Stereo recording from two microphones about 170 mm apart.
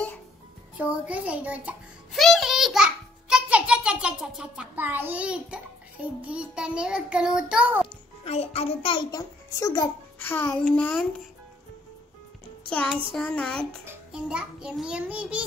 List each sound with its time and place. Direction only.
0.7 s a child's voice: 10° right (ahead or behind)
2.2 s a sound: centre (ahead or behind)
6.2 s child singing: 5° right (ahead or behind)
8.2 s a child's voice: 35° left (ahead or behind); by 11.1 s 10° left (ahead or behind)
12.6 s music: 5° left (ahead or behind)
13.1 s child singing: 5° left (ahead or behind)
13.8 s music: 5° right (ahead or behind)